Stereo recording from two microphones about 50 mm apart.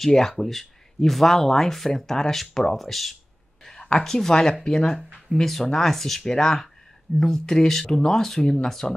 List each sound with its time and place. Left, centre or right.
0.0 s speech: centre
3.6 s speech: centre
5.3 s speech: centre